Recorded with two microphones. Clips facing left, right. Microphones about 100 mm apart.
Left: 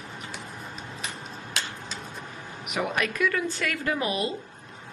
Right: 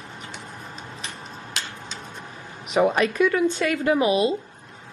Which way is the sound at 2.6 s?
30° right (ahead or behind).